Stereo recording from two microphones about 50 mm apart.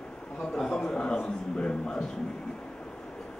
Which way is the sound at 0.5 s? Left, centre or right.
Centre.